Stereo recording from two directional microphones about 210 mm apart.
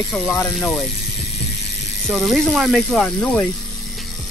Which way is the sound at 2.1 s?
Centre (ahead or behind).